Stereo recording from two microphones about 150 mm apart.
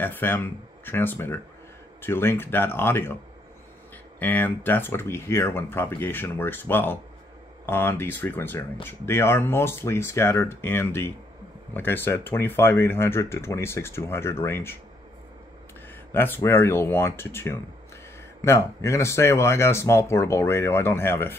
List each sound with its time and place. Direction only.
0.0 s speech: 15° left (ahead or behind)
4.2 s speech: 10° left (ahead or behind)
16.1 s speech: 15° left (ahead or behind)